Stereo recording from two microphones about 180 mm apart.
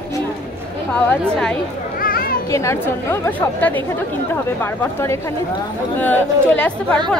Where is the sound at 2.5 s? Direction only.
15° left (ahead or behind).